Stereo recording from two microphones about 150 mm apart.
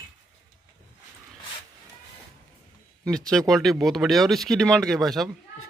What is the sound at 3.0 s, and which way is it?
Speech, 5° left (ahead or behind).